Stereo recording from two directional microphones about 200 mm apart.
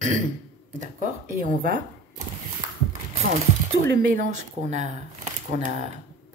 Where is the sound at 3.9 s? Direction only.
50° right (ahead or behind).